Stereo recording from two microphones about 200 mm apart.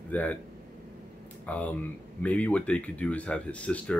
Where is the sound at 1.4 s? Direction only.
5° left (ahead or behind).